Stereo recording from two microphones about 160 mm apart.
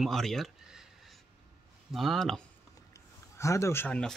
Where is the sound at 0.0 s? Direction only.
Centre (ahead or behind).